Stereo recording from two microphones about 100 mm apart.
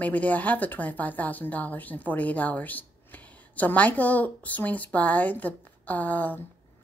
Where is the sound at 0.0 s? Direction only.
15° left (ahead or behind).